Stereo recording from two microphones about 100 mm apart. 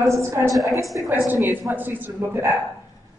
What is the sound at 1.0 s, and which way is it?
A man's voice, 20° right (ahead or behind).